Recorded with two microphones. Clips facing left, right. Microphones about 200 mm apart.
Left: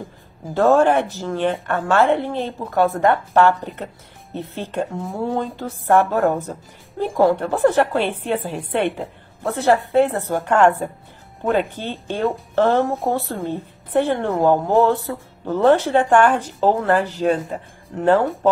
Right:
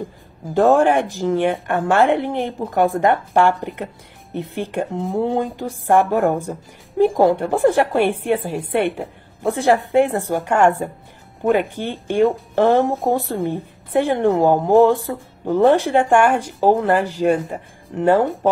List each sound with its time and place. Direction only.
0.6 s a woman's voice: 15° right (ahead or behind)